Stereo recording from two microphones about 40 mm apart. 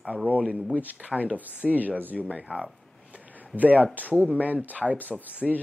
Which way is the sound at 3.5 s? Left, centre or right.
Right.